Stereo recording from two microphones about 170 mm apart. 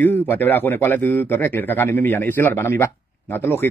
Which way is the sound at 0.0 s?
10° left (ahead or behind).